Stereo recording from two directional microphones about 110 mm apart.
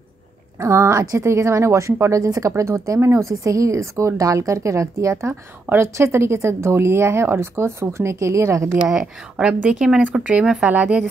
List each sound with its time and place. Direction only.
0.6 s a woman's voice: 25° right (ahead or behind)
8.8 s speech: 5° right (ahead or behind)